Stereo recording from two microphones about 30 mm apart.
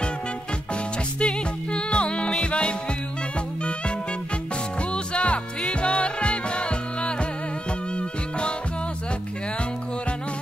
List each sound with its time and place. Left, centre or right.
1.2 s music: left
4.9 s music: left